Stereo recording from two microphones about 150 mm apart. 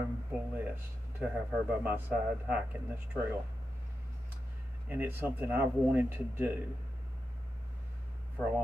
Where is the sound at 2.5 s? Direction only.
10° right (ahead or behind).